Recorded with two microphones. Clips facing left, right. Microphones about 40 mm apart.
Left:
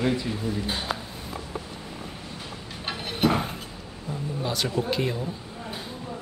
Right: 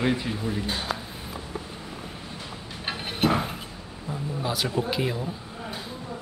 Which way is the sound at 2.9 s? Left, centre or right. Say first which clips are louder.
Even; centre.